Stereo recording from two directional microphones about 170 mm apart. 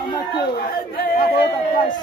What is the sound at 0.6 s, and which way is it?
Speech, 65° left (ahead or behind).